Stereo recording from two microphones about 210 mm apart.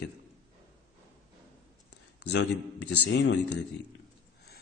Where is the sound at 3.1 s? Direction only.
55° left (ahead or behind).